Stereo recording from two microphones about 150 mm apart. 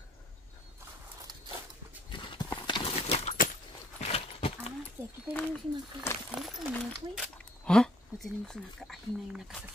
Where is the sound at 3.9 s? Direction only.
45° left (ahead or behind).